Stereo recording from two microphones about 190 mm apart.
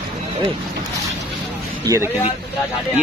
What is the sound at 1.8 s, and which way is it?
Speech, 15° right (ahead or behind).